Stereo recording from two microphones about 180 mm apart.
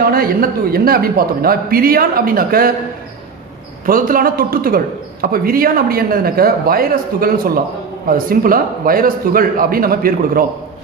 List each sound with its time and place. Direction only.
0.1 s a man's voice: 55° right (ahead or behind)
3.8 s a man's voice: 50° right (ahead or behind)